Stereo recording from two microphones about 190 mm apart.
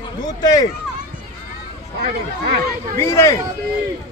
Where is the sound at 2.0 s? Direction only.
55° right (ahead or behind).